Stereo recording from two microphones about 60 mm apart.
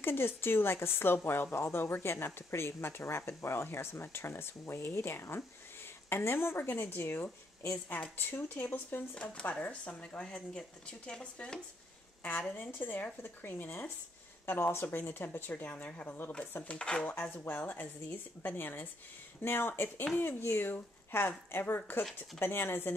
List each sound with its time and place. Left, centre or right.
0.0 s speech: left
8.3 s speech: left; by 11.6 s centre
12.2 s speech: left; by 17.1 s centre
17.5 s speech: left